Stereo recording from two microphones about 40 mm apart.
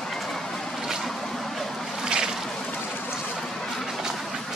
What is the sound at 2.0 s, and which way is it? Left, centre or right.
Boat, centre.